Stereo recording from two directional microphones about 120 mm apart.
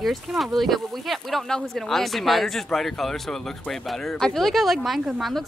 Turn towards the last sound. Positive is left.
turn(degrees=0)  # may be behind; listen again after turning